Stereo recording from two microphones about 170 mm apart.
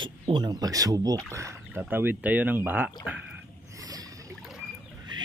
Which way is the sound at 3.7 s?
20° right (ahead or behind).